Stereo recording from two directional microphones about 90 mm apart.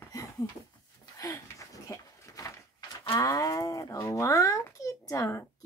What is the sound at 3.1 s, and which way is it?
A child's voice, 40° left (ahead or behind).